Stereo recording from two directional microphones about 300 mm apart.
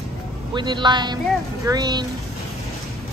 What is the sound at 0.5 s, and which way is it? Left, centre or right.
Speech, centre.